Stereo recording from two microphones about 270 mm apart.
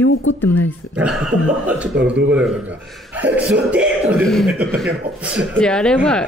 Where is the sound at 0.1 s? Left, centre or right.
Left.